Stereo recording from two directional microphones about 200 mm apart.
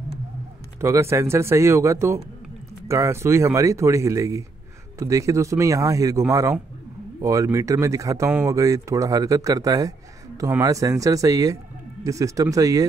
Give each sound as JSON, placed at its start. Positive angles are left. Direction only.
{"t": 0.7, "sound": "speech", "side_deg": -15}